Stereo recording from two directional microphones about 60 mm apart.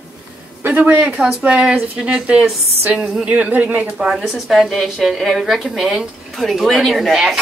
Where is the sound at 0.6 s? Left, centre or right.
Right.